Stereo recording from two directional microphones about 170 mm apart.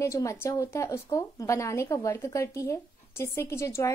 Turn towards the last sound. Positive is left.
turn(degrees=15)  # may be behind; listen again after turning